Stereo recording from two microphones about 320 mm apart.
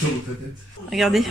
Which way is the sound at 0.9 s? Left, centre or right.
Centre.